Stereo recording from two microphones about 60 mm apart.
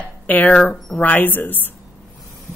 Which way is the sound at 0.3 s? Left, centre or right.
Left.